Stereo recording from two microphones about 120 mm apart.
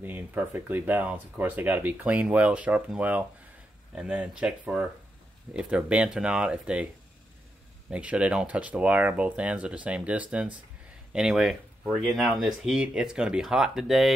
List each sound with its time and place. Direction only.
0.0 s speech: 15° right (ahead or behind)
7.9 s speech: 10° right (ahead or behind)